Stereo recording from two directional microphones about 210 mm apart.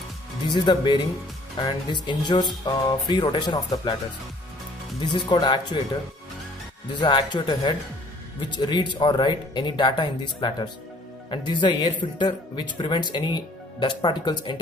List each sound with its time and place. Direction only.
0.5 s speech: 20° left (ahead or behind)
5.0 s speech: 20° left (ahead or behind)
6.9 s speech: 20° left (ahead or behind)